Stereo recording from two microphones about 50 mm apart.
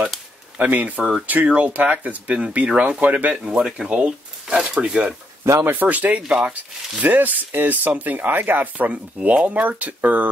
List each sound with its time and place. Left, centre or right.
0.6 s speech: right
3.1 s speech: right
3.3 s speech: centre
5.4 s speech: right
5.7 s speech: right
8.7 s speech: right